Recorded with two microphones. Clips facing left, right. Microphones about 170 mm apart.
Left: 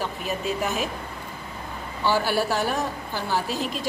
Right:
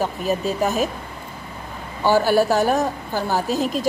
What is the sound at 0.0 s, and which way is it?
Speech, 40° right (ahead or behind).